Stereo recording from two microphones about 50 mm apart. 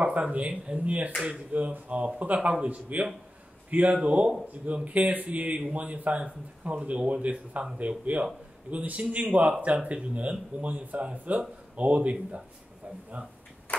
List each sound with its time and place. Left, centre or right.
0.0 s speech: right